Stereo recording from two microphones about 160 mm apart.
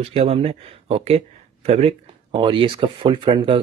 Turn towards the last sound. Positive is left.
turn(degrees=-30)  # may be behind; listen again after turning